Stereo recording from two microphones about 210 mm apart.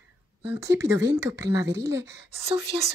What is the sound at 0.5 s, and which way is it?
Speech, 15° right (ahead or behind).